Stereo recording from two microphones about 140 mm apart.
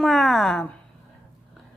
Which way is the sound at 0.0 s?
Centre (ahead or behind).